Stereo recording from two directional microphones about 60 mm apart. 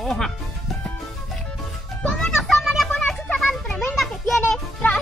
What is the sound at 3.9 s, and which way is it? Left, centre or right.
Children playing, centre.